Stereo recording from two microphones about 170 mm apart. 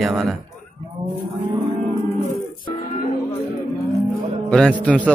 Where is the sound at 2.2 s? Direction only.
50° left (ahead or behind).